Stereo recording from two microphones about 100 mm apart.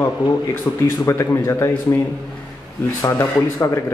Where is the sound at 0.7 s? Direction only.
40° left (ahead or behind).